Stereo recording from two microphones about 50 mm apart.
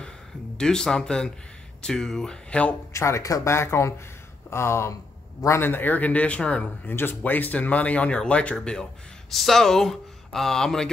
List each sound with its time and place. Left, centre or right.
0.6 s speech: centre
2.9 s speech: left
5.6 s speech: left
6.9 s speech: left
9.3 s speech: centre